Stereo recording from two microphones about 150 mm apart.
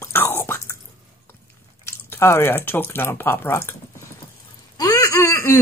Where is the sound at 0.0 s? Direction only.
15° left (ahead or behind).